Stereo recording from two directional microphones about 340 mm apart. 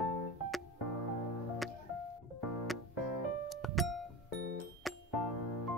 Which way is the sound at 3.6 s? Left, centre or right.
Centre.